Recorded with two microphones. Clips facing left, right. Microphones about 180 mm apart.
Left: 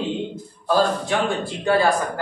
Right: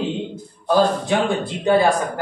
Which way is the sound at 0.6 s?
20° right (ahead or behind).